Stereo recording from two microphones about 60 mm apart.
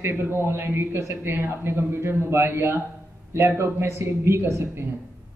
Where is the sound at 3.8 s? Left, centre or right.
Right.